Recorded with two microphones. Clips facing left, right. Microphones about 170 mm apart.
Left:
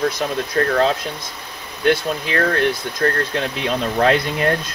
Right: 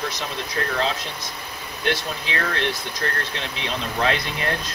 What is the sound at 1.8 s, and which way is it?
Speech, 45° left (ahead or behind).